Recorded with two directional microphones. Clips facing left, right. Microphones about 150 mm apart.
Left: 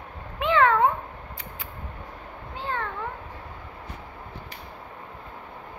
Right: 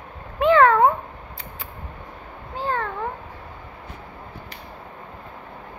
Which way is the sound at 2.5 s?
40° right (ahead or behind).